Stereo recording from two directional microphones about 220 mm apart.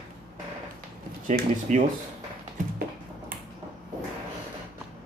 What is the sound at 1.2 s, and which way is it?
Speech, 35° right (ahead or behind).